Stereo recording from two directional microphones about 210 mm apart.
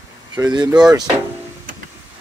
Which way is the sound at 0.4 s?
15° right (ahead or behind).